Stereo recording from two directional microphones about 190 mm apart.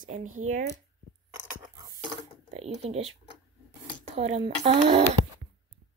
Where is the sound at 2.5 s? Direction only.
35° right (ahead or behind).